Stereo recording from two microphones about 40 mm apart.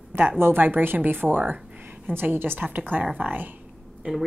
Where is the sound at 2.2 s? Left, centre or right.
Right.